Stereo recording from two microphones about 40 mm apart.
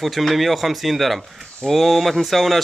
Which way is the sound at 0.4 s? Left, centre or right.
Centre.